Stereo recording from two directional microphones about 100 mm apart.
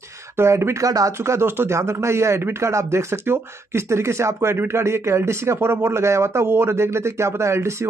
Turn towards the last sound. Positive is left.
turn(degrees=-30)  # may be behind; listen again after turning